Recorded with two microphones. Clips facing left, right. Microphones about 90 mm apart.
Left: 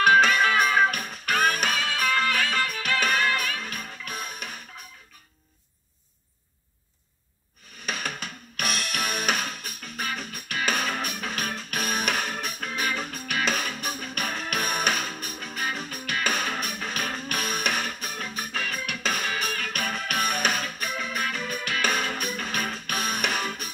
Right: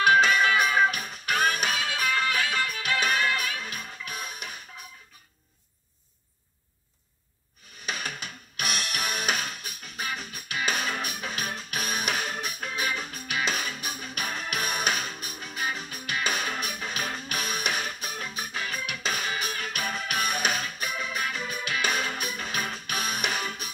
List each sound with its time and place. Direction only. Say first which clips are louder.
0.0 s music: left 1 dB; 45° left (ahead or behind)
7.8 s music: left 2 dB; 45° left (ahead or behind)